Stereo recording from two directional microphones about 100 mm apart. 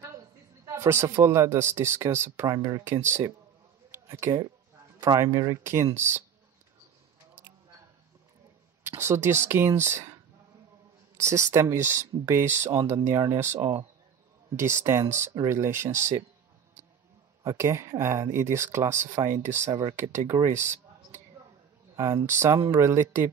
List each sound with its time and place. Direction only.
0.0 s a sound: 35° right (ahead or behind)
0.7 s speech: 25° right (ahead or behind)
8.8 s speech: 25° right (ahead or behind)
11.1 s speech: 30° right (ahead or behind)
13.6 s speech: 50° right (ahead or behind)
14.6 s speech: 30° right (ahead or behind)
17.4 s speech: 30° right (ahead or behind)
20.5 s a sound: 25° right (ahead or behind)
21.9 s speech: 30° right (ahead or behind)